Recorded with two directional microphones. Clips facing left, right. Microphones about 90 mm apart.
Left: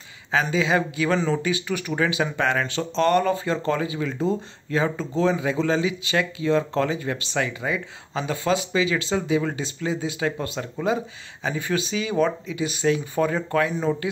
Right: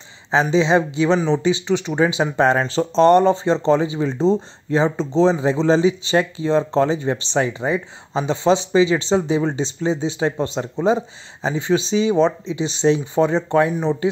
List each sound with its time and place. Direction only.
0.3 s speech: 25° right (ahead or behind)